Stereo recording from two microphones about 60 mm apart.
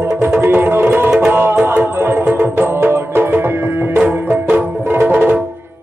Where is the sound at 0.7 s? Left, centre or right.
Right.